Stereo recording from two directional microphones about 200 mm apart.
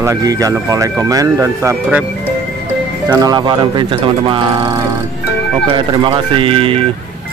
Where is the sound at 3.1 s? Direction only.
20° right (ahead or behind).